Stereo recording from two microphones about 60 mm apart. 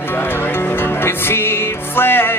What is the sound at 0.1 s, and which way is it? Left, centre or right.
Music, left.